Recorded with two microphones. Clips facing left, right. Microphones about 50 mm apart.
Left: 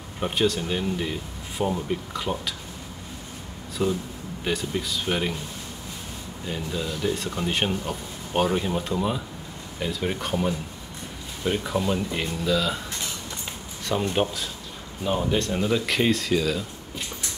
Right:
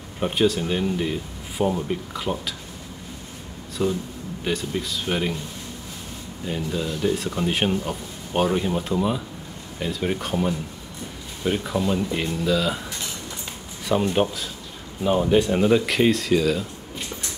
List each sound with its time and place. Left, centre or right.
0.2 s speech: centre
3.8 s speech: centre
6.4 s speech: centre
13.8 s speech: centre
15.8 s speech: centre